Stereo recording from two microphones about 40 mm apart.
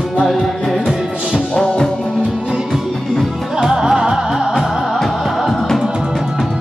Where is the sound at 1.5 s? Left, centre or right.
Centre.